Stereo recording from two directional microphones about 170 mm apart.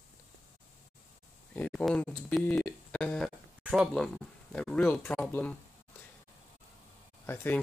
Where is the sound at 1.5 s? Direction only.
5° left (ahead or behind).